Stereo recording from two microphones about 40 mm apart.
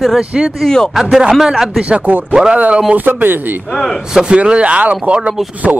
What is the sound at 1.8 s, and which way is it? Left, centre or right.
Speech, right.